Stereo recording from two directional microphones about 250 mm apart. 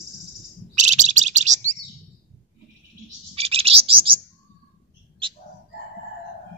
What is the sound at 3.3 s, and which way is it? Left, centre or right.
Bird, right.